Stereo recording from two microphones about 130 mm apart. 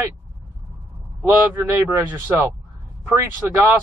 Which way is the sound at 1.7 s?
15° right (ahead or behind).